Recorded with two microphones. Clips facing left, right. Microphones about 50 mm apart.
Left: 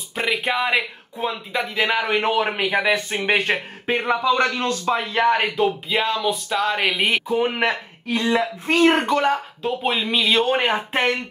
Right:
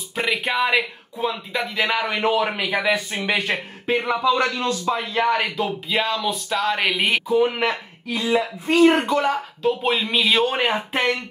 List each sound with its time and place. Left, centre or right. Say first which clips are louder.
0.1 s a man's voice: left 1 dB; centre
3.3 s speech: left 3 dB; left
5.2 s speech: left 2 dB; left
5.6 s speech: left 2 dB; centre
7.2 s a man's voice: right 2 dB; left
8.1 s speech: left 1 dB; left
9.6 s speech: right 2 dB; centre